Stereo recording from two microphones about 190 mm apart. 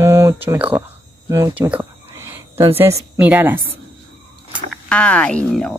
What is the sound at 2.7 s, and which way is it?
Speech, 15° right (ahead or behind).